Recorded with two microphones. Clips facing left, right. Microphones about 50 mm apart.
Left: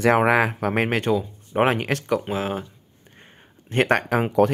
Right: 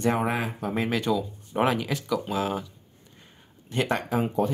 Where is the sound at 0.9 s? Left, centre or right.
Left.